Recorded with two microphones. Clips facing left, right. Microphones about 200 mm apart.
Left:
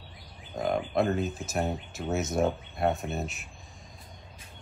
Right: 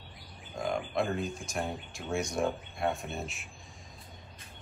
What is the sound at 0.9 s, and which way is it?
Speech, 5° left (ahead or behind).